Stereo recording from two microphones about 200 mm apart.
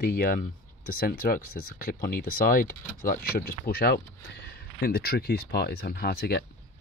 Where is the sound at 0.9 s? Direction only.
50° left (ahead or behind).